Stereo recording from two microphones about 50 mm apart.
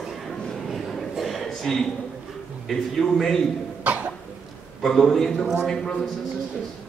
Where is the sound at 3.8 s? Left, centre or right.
Right.